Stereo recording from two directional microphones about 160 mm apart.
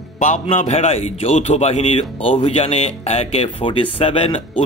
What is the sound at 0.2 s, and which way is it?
A man's voice, 50° left (ahead or behind).